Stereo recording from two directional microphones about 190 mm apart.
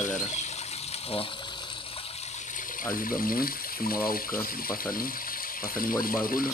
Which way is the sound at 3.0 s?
50° left (ahead or behind).